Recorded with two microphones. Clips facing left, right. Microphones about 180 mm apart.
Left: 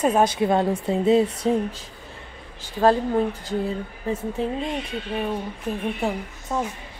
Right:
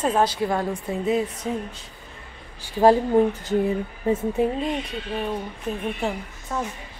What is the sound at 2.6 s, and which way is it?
Speech, 15° right (ahead or behind).